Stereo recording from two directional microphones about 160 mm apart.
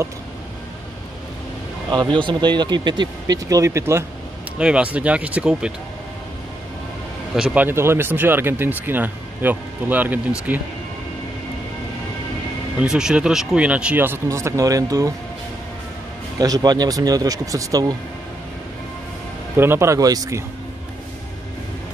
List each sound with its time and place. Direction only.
1.9 s speech: 30° right (ahead or behind)
4.6 s speech: 5° right (ahead or behind)
7.5 s speech: 15° right (ahead or behind)
12.8 s speech: 5° right (ahead or behind); by 15.1 s 20° right (ahead or behind)
16.3 s speech: 25° right (ahead or behind)
19.5 s speech: 15° right (ahead or behind)